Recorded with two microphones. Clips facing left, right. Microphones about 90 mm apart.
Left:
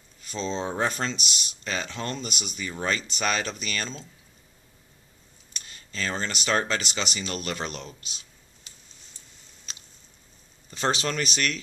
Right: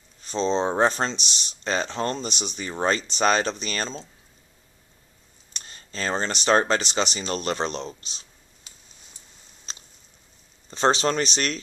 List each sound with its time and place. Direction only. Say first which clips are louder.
0.2 s speech: right 7 dB; 30° right (ahead or behind)
5.5 s speech: right 2 dB; 30° right (ahead or behind)
9.7 s a sound: right 3 dB; 30° right (ahead or behind)
10.7 s speech: right 6 dB; 30° right (ahead or behind)